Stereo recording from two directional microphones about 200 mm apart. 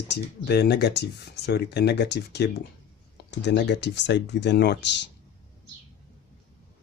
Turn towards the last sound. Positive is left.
turn(degrees=60)  # may be behind; listen again after turning